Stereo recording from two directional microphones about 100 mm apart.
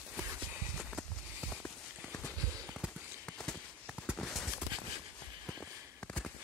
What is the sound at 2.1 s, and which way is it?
Clip-clop, 20° left (ahead or behind).